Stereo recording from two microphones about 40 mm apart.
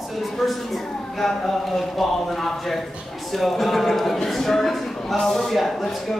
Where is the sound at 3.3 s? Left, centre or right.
Centre.